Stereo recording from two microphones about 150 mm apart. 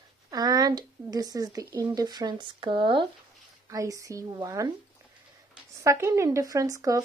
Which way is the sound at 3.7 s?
20° right (ahead or behind).